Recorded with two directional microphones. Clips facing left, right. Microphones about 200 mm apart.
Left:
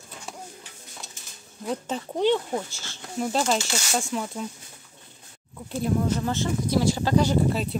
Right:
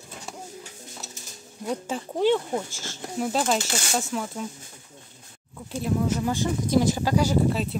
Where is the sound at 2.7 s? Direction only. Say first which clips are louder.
Right 5 dB; 45° right (ahead or behind).